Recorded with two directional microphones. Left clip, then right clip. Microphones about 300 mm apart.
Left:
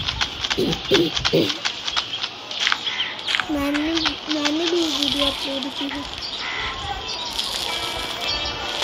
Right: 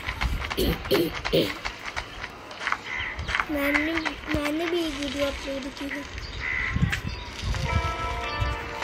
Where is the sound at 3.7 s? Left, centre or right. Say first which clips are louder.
Left 3 dB; left.